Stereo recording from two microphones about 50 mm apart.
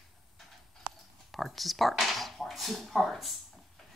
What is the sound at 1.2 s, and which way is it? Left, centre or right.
Speech, centre.